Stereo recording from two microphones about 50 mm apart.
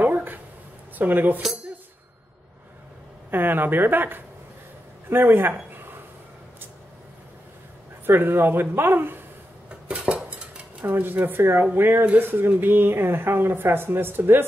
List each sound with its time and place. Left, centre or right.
0.0 s a sound: right
0.9 s speech: right
3.3 s speech: right
8.1 s speech: right
9.7 s dishes: centre
10.9 s speech: right